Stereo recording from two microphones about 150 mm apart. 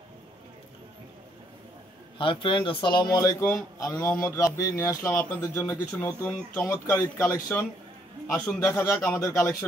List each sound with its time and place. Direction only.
2.1 s speech: 35° left (ahead or behind); by 4.2 s 10° left (ahead or behind)
4.2 s speech: 20° left (ahead or behind)